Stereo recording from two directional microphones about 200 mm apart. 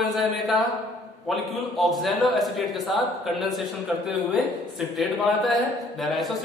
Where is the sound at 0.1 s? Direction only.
Centre (ahead or behind).